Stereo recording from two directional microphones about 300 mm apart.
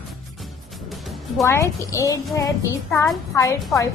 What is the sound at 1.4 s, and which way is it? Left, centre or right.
A woman's voice, centre.